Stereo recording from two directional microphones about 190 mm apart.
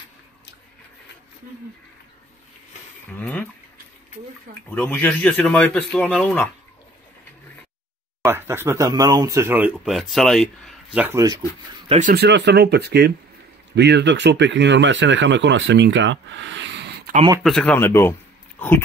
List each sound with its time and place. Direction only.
3.1 s a sound: 10° left (ahead or behind)
4.6 s speech: 10° left (ahead or behind)
8.3 s speech: 10° right (ahead or behind)
12.1 s speech: 60° right (ahead or behind)
17.4 s speech: 5° left (ahead or behind)